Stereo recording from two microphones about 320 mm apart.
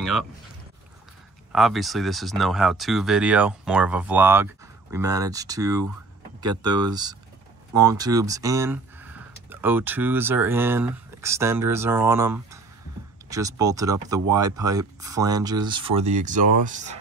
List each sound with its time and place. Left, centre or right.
1.5 s speech: centre; by 17.0 s right